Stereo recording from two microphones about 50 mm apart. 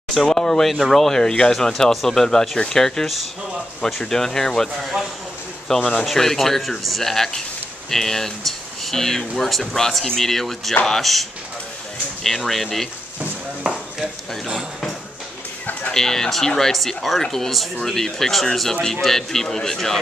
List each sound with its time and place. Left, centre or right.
0.1 s speech: centre
1.2 s speech: centre
5.7 s speech: centre
13.7 s speech: centre
15.9 s speech: centre